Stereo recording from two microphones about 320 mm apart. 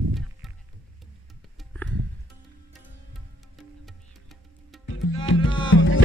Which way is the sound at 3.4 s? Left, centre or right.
Centre.